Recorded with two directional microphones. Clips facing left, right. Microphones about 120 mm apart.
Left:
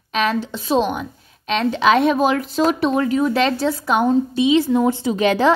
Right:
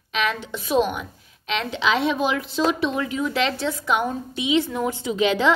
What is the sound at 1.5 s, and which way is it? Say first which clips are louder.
A woman's voice: left 7 dB; 40° left (ahead or behind).